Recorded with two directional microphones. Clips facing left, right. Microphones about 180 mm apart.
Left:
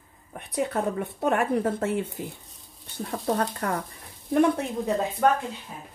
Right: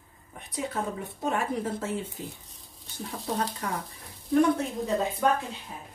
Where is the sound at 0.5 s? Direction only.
60° left (ahead or behind).